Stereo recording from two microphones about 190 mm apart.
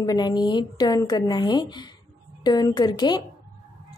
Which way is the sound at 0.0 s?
20° left (ahead or behind).